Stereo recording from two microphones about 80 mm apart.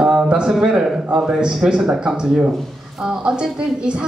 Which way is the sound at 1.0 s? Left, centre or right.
Centre.